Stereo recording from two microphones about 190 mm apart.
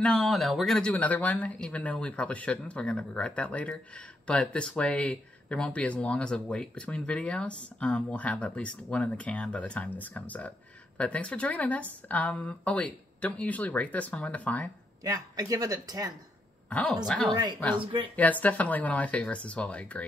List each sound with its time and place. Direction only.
0.0 s speech: centre (ahead or behind)
15.0 s speech: 20° right (ahead or behind)
16.6 s a woman's voice: 5° left (ahead or behind)
17.3 s speech: 20° right (ahead or behind)
18.1 s speech: 10° left (ahead or behind)